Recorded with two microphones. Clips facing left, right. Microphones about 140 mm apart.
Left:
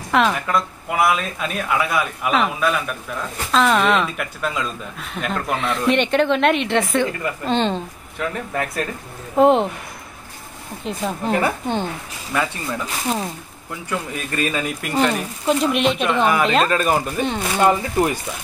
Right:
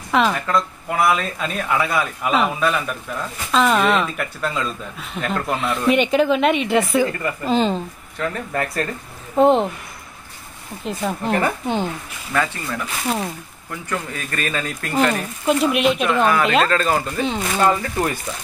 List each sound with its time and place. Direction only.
0.1 s speech: centre (ahead or behind)
10.9 s speech: centre (ahead or behind)
12.3 s speech: 10° left (ahead or behind)
13.1 s speech: centre (ahead or behind)
13.8 s speech: 15° left (ahead or behind)
15.0 s speech: centre (ahead or behind)
16.6 s speech: 15° left (ahead or behind)
17.2 s speech: centre (ahead or behind)
17.6 s speech: 20° left (ahead or behind)